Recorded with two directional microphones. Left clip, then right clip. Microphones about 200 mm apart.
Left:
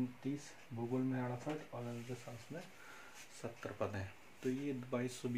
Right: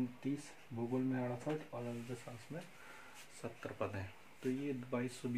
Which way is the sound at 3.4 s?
5° left (ahead or behind).